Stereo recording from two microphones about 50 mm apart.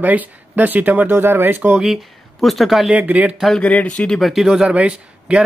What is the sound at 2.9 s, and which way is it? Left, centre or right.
Speech, right.